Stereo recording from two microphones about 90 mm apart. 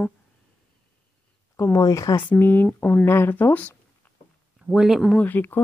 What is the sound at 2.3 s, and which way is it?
A woman's voice, 20° left (ahead or behind).